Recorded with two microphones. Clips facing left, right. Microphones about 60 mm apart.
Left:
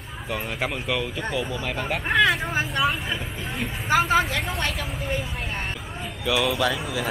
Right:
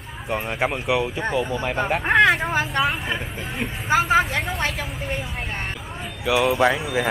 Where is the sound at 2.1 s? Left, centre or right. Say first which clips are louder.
Right 3 dB; right.